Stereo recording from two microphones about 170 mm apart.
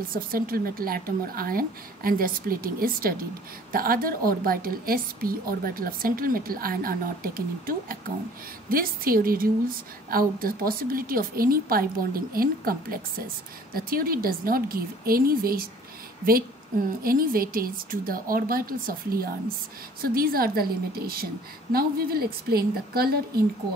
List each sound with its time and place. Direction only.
0.1 s a woman's voice: 60° right (ahead or behind)
17.0 s a woman's voice: 60° right (ahead or behind)